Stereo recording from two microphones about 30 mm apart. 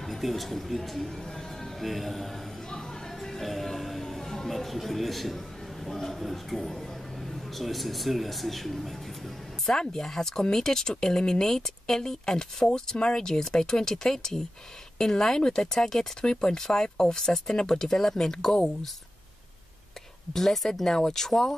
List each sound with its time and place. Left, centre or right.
0.0 s speech: centre
2.7 s music: centre
5.9 s speech: centre
9.7 s speech: centre
12.9 s speech: left
13.2 s speech: centre
20.3 s speech: centre